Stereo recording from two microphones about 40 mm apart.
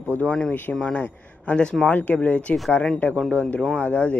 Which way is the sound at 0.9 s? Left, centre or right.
Left.